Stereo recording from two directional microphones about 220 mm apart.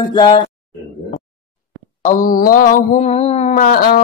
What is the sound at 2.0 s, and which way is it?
Mantra, 35° left (ahead or behind).